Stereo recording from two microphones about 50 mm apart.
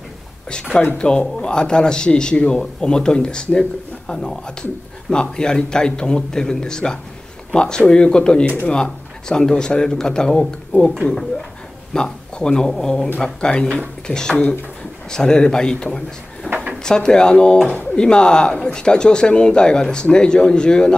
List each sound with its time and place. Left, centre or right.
0.9 s speech: centre
10.7 s speech: left
11.9 s speech: centre
16.5 s a sound: left
16.8 s speech: centre